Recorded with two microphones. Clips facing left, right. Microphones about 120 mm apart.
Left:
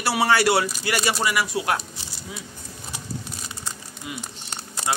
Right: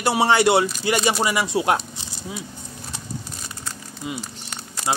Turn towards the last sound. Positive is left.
turn(degrees=30)  # may be behind; listen again after turning